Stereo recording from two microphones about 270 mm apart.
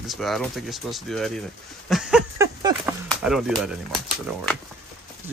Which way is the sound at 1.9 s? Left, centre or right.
Centre.